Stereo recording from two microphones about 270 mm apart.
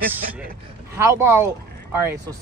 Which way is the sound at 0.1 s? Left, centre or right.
Centre.